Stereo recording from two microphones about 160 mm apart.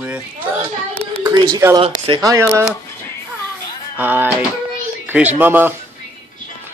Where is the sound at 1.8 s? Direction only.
35° right (ahead or behind).